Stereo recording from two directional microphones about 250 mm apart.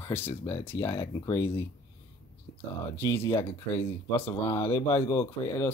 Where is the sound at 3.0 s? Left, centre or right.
Centre.